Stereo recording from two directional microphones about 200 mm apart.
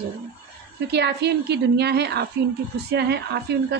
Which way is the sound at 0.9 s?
55° right (ahead or behind).